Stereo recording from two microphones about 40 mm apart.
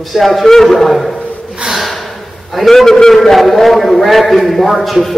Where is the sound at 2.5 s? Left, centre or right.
Centre.